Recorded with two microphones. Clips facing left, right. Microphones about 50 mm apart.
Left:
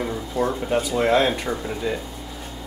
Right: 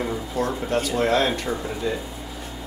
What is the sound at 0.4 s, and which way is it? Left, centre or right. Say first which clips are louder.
Speech: left 2 dB; centre.